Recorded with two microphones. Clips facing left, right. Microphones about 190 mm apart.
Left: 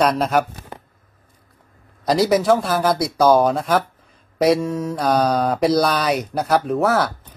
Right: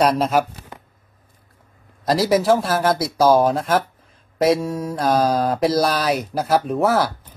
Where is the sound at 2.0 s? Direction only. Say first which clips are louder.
Left 1 dB; centre (ahead or behind).